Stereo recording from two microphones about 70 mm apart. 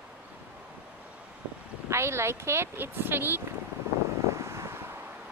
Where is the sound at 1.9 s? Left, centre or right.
Right.